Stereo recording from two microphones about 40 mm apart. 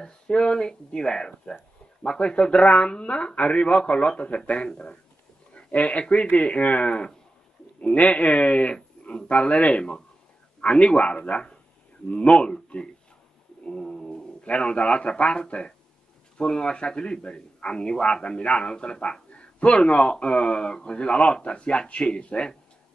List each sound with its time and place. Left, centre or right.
0.0 s a man's voice: left
13.7 s a sound: left
14.4 s a man's voice: left